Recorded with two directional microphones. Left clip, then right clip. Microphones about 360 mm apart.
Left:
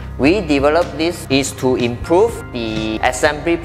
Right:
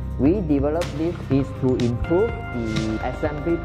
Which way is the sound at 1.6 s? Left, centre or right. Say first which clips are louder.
Left 5 dB; centre.